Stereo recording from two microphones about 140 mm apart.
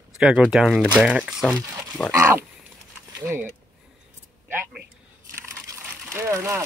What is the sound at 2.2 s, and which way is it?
Pig, 15° right (ahead or behind).